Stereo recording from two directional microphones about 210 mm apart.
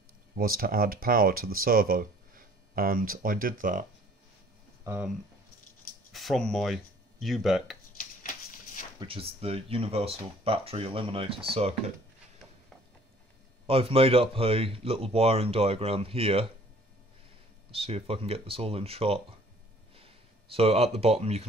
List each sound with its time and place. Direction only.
0.4 s speech: 45° right (ahead or behind)
4.8 s speech: 10° right (ahead or behind)
6.1 s speech: centre (ahead or behind)
8.0 s a sound: 40° left (ahead or behind)
9.0 s speech: 25° right (ahead or behind)
13.7 s speech: 25° right (ahead or behind)
17.6 s speech: 25° right (ahead or behind)
20.5 s speech: 30° right (ahead or behind)